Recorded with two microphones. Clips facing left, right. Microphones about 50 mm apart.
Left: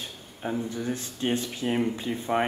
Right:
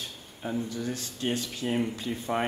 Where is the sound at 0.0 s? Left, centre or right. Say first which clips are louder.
Left 2 dB; centre.